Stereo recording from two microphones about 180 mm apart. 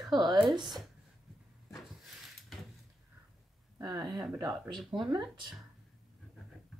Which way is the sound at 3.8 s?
25° right (ahead or behind).